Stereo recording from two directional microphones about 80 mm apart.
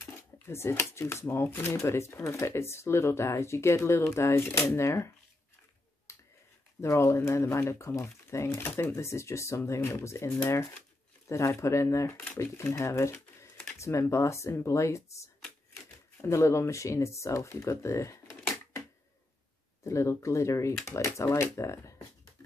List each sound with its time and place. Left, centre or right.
0.0 s speech: left
6.1 s finger snapping: left
6.8 s speech: left
16.2 s speech: left
19.8 s speech: left